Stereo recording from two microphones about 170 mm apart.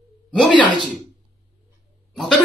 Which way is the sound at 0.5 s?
25° left (ahead or behind).